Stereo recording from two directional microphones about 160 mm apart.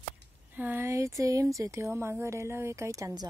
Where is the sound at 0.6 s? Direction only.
15° right (ahead or behind).